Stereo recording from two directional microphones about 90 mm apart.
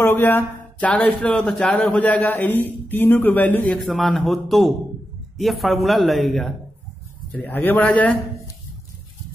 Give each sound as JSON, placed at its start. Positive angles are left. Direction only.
{"t": 0.0, "sound": "speech", "side_deg": 25}
{"t": 3.8, "sound": "speech", "side_deg": 0}
{"t": 7.3, "sound": "a man's voice", "side_deg": 20}